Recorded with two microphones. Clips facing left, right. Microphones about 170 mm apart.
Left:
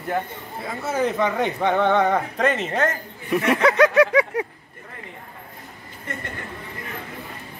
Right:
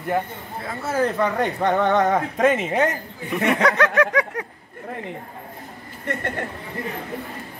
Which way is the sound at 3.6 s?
10° left (ahead or behind).